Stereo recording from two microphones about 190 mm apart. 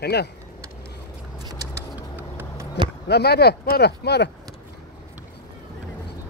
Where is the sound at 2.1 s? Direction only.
10° right (ahead or behind).